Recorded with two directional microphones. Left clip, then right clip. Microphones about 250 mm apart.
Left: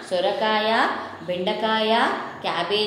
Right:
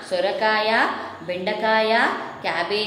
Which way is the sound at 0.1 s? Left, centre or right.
Centre.